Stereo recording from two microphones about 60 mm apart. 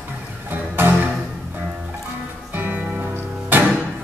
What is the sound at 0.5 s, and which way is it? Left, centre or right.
Music, right.